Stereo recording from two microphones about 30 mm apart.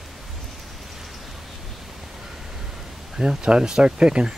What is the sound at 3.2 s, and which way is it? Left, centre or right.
Speech, right.